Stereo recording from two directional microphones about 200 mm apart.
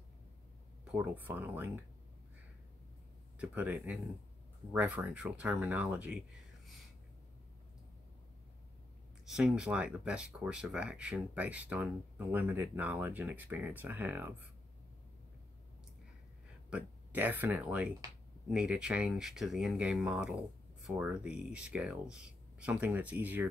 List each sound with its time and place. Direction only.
0.9 s speech: 10° right (ahead or behind)
3.3 s speech: 10° right (ahead or behind)
9.3 s speech: 5° right (ahead or behind)
16.7 s speech: 10° right (ahead or behind)